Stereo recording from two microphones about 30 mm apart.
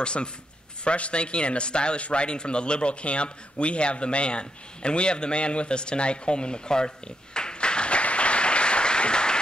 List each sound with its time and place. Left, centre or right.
0.0 s speech: left
7.3 s applause: left